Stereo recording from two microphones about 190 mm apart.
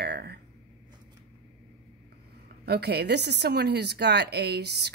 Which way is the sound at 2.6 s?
60° right (ahead or behind).